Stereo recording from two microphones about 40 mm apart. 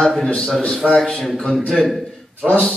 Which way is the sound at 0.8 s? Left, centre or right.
Centre.